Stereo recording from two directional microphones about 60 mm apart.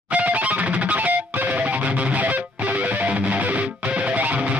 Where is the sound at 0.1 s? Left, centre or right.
Right.